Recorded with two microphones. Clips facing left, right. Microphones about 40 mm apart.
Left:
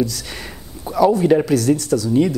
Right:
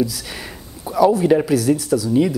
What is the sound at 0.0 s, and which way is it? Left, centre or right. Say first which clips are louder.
Speech: even; centre.